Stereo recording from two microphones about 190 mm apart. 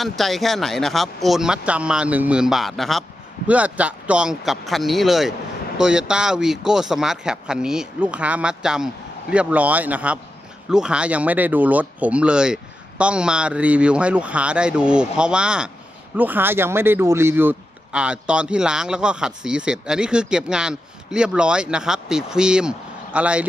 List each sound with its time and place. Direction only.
0.0 s speech: centre (ahead or behind)